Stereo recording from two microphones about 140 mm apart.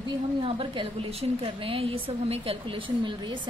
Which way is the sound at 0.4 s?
40° right (ahead or behind).